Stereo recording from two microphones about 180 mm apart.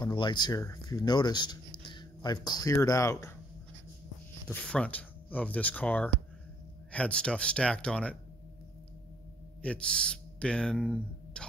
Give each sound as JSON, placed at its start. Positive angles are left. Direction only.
{"t": 0.0, "sound": "speech", "side_deg": 25}
{"t": 4.5, "sound": "speech", "side_deg": 5}
{"t": 9.6, "sound": "speech", "side_deg": 5}